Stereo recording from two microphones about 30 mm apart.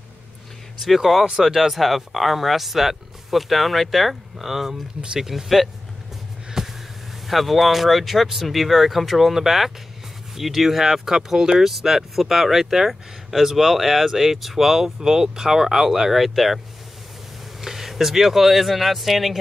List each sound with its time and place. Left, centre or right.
0.7 s speech: centre
4.4 s speech: centre
6.6 s a sound: centre
7.2 s speech: centre